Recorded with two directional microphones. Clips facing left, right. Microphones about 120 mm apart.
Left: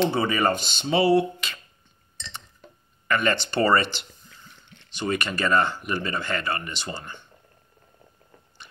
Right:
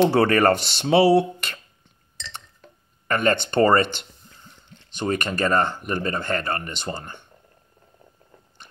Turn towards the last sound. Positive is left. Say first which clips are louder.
# right 3 dB
turn(degrees=-50)  # may be behind; listen again after turning